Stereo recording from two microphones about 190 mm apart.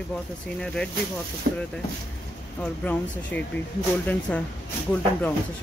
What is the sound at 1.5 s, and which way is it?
Speech, 55° right (ahead or behind).